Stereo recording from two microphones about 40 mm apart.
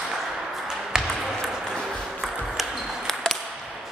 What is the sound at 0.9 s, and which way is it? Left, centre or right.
Ping, centre.